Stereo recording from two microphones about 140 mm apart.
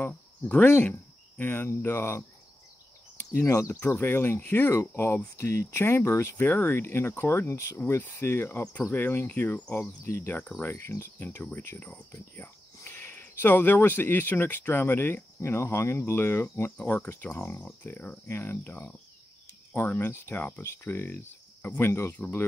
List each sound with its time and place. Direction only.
0.0 s speech: 10° left (ahead or behind)